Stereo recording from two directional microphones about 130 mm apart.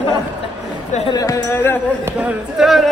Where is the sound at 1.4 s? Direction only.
15° left (ahead or behind).